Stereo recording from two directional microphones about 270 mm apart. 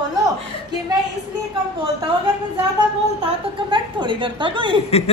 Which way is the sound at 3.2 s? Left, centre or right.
Right.